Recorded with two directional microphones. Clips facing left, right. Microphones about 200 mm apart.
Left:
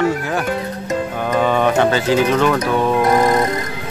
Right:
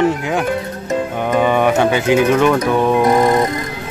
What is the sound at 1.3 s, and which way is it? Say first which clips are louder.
Speech: right 2 dB; 10° right (ahead or behind).